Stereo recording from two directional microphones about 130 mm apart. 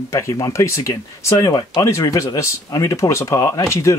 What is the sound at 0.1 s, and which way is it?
Speech, 25° left (ahead or behind).